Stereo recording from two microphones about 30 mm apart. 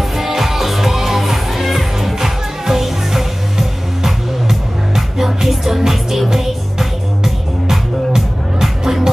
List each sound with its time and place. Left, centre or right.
0.2 s music: centre
2.1 s music: centre
8.1 s music: centre